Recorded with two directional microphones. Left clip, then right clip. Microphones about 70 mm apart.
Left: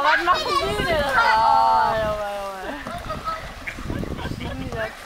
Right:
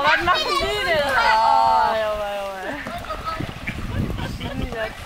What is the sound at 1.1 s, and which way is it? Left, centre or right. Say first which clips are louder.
Cat: even; right.